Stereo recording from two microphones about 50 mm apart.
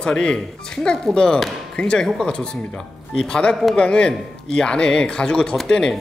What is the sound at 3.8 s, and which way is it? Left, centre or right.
Speech, centre.